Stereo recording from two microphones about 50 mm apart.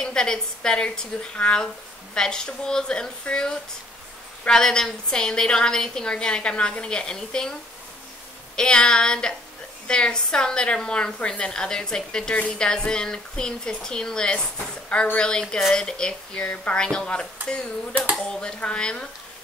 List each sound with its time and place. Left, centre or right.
0.0 s a woman's voice: centre
8.5 s a woman's voice: centre